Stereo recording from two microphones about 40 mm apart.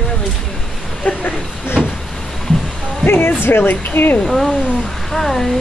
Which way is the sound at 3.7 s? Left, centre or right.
Left.